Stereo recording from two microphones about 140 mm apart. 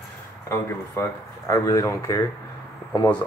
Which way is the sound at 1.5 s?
20° left (ahead or behind).